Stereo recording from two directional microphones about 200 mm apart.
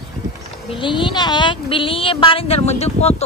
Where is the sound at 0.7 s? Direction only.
25° left (ahead or behind).